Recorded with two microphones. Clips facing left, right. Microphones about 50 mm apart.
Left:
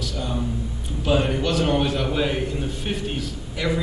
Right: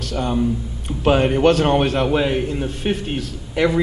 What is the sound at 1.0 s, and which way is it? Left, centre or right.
A man's voice, right.